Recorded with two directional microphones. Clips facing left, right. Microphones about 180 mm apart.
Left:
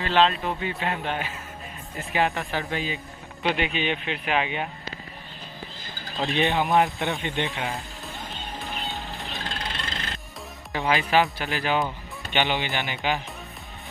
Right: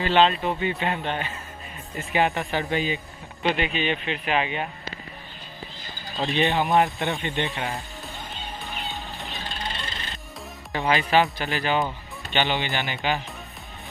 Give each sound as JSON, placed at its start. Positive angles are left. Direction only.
{"t": 0.0, "sound": "speech", "side_deg": 0}
{"t": 3.4, "sound": "speech", "side_deg": 10}
{"t": 6.1, "sound": "speech", "side_deg": 0}
{"t": 8.8, "sound": "music", "side_deg": 0}
{"t": 9.6, "sound": "bird", "side_deg": 90}
{"t": 10.7, "sound": "speech", "side_deg": 0}